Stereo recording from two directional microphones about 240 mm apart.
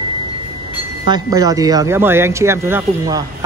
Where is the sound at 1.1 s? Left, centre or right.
Centre.